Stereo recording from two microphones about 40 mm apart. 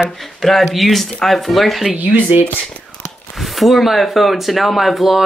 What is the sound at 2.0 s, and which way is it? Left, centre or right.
Speech, right.